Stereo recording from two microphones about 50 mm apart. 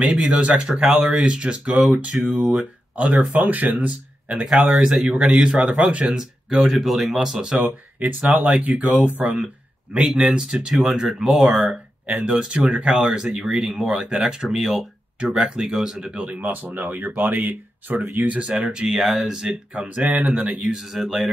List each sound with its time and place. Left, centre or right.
0.0 s speech: right
4.7 s speech: centre
5.4 s speech: right
6.1 s speech: centre
7.6 s speech: right; by 11.2 s centre
11.6 s speech: right
14.5 s speech: centre
15.3 s speech: centre
16.2 s speech: right
18.9 s speech: centre
19.4 s speech: right
20.0 s speech: right
20.6 s speech: centre